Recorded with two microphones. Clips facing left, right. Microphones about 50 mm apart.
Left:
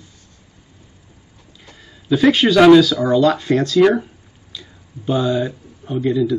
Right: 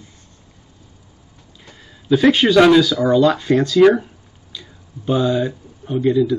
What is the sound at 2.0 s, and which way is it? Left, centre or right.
Speech, centre.